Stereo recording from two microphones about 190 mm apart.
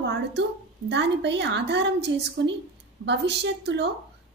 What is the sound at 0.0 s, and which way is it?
A woman's voice, 65° right (ahead or behind).